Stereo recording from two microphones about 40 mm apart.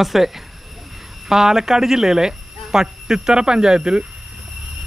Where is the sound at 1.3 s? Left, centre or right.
Centre.